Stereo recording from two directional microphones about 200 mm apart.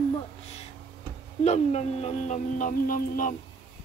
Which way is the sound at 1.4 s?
35° left (ahead or behind).